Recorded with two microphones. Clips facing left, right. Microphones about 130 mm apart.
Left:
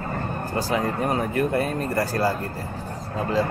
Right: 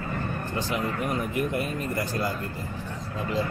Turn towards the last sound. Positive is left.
turn(degrees=35)  # may be behind; listen again after turning